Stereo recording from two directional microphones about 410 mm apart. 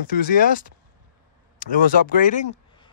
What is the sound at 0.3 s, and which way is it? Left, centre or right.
Speech, centre.